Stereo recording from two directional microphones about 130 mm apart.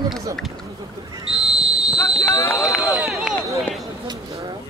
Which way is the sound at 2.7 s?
Centre (ahead or behind).